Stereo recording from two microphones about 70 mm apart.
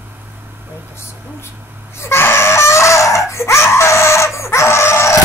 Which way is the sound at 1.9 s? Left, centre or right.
Left.